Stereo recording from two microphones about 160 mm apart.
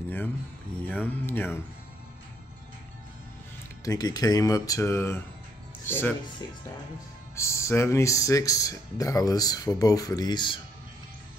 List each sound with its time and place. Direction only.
0.8 s speech: 10° left (ahead or behind)
3.8 s speech: 25° left (ahead or behind)
7.3 s speech: 20° left (ahead or behind)